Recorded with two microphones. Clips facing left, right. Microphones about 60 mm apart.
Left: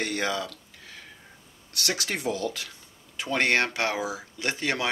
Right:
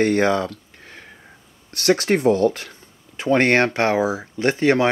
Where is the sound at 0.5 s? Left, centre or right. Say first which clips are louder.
Right 6 dB; right.